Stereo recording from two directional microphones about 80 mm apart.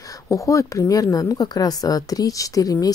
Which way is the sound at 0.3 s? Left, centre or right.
Left.